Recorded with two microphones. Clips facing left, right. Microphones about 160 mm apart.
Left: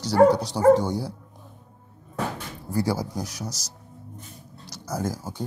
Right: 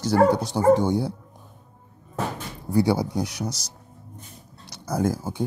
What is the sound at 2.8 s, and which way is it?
Speech, 65° right (ahead or behind).